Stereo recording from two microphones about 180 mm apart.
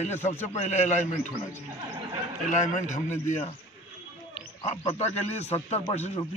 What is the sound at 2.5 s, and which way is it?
Speech, 40° left (ahead or behind).